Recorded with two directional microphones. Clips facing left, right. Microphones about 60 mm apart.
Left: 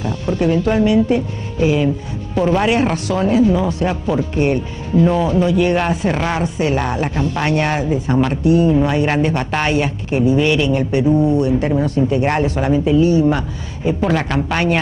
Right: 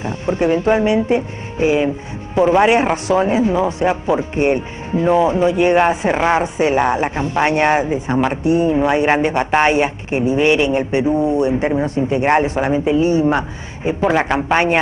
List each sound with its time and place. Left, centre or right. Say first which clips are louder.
0.0 s speech: even; right